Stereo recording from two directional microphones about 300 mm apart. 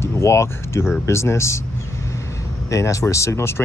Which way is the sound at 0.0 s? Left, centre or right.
Centre.